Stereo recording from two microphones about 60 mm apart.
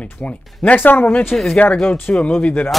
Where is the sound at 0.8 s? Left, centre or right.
Left; by 2.3 s centre.